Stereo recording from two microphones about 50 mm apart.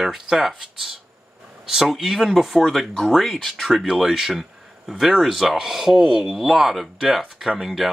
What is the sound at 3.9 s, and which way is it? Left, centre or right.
A man's voice, centre.